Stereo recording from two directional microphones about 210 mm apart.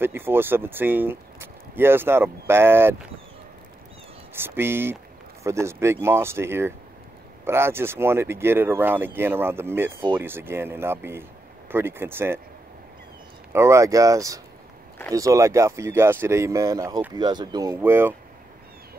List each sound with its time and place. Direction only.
0.0 s speech: 10° right (ahead or behind)
4.3 s speech: 10° right (ahead or behind)
13.5 s speech: 15° right (ahead or behind)